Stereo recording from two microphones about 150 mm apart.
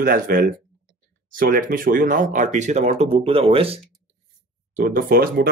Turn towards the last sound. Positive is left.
turn(degrees=-85)